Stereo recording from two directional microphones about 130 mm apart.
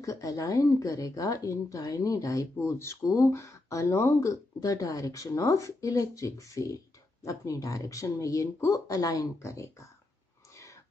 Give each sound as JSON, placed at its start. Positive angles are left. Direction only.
{"t": 0.0, "sound": "speech", "side_deg": 25}